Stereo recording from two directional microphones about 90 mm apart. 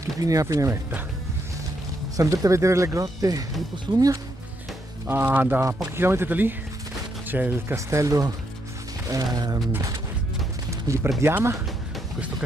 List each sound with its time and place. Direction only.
0.0 s speech: 40° right (ahead or behind)
2.1 s speech: 40° right (ahead or behind)
5.0 s speech: 20° right (ahead or behind)
7.7 s speech: 35° right (ahead or behind)
10.7 s a sound: 35° right (ahead or behind)
11.2 s speech: 30° right (ahead or behind)